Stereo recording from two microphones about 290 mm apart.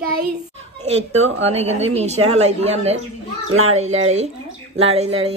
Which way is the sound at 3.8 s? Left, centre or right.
Right.